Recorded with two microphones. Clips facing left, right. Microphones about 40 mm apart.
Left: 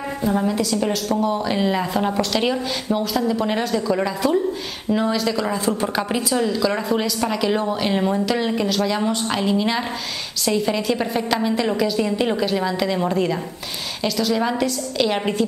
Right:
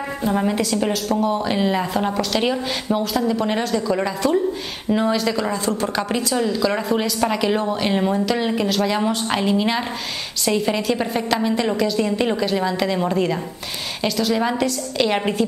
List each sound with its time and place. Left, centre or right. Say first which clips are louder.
0.4 s a woman's voice: right 1 dB; centre
5.5 s a woman's voice: even; centre